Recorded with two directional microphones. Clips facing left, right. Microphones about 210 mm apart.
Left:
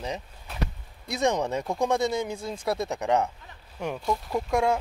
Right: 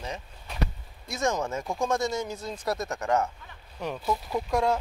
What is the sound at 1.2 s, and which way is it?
Speech, 15° left (ahead or behind).